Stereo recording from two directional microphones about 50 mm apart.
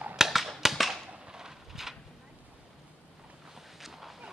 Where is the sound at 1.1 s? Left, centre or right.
Centre.